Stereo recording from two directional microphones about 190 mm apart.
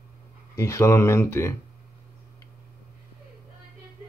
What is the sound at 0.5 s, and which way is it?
Speech, 15° left (ahead or behind).